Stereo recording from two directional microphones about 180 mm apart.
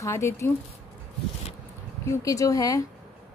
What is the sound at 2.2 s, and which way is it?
Speech, 20° left (ahead or behind).